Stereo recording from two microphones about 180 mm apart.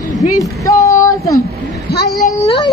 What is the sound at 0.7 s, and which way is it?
Speech, 15° left (ahead or behind).